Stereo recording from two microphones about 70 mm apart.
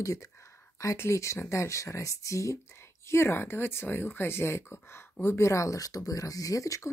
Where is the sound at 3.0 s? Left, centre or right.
Left.